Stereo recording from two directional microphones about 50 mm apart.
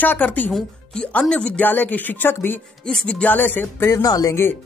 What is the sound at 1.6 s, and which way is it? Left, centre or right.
Speech, left.